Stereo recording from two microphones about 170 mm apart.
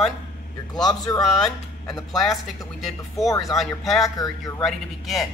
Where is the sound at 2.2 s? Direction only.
Centre (ahead or behind).